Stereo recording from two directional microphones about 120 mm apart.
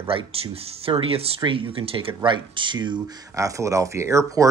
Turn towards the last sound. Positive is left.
turn(degrees=-25)  # may be behind; listen again after turning